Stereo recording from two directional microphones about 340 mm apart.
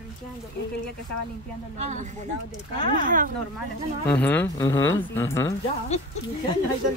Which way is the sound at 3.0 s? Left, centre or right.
Right.